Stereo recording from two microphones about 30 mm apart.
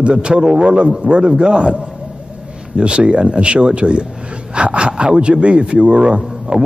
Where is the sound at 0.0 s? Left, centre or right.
Right.